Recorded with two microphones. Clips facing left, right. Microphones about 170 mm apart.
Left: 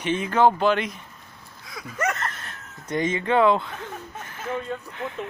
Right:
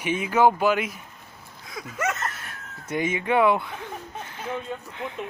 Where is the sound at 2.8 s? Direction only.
10° right (ahead or behind).